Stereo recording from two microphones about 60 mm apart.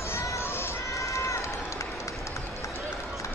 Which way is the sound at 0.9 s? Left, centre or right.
Left.